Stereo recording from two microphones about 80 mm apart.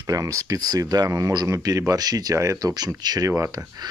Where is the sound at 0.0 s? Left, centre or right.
Right.